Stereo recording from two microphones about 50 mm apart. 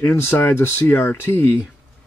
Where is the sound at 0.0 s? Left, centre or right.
Left.